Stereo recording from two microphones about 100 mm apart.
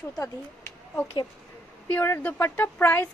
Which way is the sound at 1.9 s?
20° left (ahead or behind).